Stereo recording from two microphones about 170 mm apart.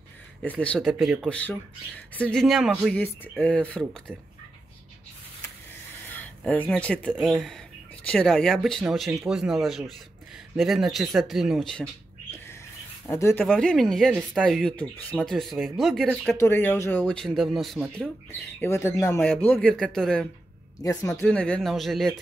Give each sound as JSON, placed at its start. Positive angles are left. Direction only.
{"t": 0.6, "sound": "speech", "side_deg": 5}
{"t": 2.9, "sound": "speech", "side_deg": 5}
{"t": 6.1, "sound": "speech", "side_deg": 10}
{"t": 13.0, "sound": "speech", "side_deg": 15}
{"t": 13.5, "sound": "speech", "side_deg": 0}
{"t": 16.3, "sound": "speech", "side_deg": 10}
{"t": 18.6, "sound": "speech", "side_deg": 15}